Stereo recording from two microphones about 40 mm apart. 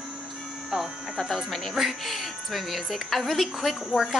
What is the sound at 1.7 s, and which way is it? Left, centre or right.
Speech, centre.